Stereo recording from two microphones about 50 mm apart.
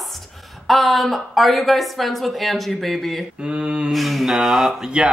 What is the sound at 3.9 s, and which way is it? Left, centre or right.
Speech, centre.